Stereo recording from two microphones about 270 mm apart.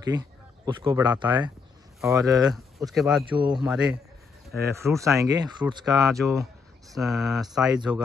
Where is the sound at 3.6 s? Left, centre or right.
Centre.